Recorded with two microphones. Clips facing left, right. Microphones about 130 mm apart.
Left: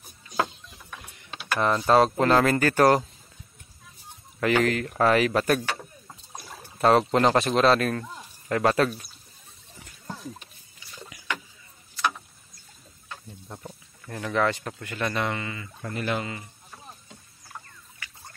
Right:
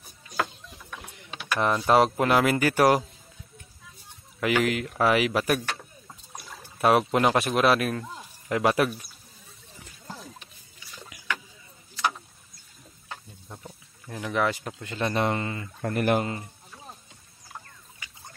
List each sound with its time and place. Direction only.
1.2 s mechanisms: 15° right (ahead or behind)
2.1 s speech: 15° right (ahead or behind)
4.4 s speech: 10° right (ahead or behind)
6.8 s a man's voice: 10° right (ahead or behind)
14.0 s speech: 10° right (ahead or behind)
14.9 s speech: 30° right (ahead or behind); by 16.4 s 45° right (ahead or behind)
17.9 s a sound: 20° right (ahead or behind)